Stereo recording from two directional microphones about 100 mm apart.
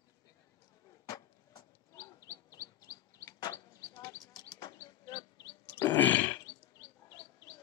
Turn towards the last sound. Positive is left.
turn(degrees=20)  # may be behind; listen again after turning